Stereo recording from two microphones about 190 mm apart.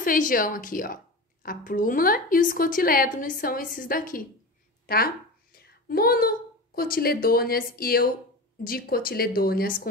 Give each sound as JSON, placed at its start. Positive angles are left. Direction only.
{"t": 0.0, "sound": "a woman's voice", "side_deg": 45}